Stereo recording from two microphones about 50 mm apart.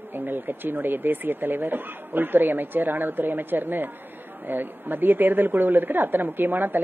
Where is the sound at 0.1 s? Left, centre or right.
Right.